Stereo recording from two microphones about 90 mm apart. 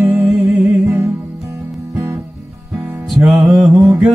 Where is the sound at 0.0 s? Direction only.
20° right (ahead or behind).